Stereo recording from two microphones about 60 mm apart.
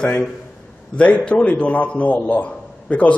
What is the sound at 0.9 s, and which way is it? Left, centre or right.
A man's voice, left.